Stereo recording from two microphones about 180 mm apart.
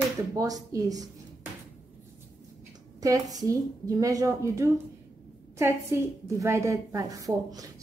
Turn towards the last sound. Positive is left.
turn(degrees=-20)  # may be behind; listen again after turning